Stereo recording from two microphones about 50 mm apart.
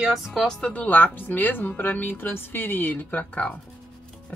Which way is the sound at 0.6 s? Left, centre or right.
Left.